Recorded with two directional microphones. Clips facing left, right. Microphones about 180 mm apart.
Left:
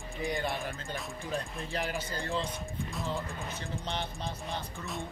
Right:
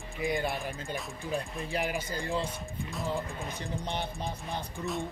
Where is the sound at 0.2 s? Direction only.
15° right (ahead or behind).